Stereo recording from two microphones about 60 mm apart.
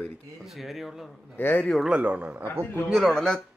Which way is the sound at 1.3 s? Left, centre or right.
Left.